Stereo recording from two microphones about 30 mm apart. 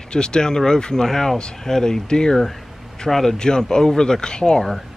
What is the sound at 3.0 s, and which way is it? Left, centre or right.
Speech, centre.